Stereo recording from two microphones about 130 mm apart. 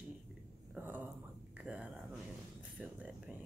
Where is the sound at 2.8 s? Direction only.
10° right (ahead or behind).